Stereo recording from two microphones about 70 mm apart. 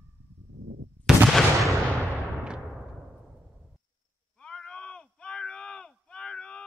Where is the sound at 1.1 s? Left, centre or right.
Centre.